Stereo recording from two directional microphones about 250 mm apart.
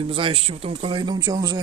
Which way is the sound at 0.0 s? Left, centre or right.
Right.